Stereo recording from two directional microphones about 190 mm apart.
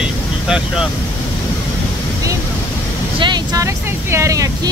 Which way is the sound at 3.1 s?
25° right (ahead or behind).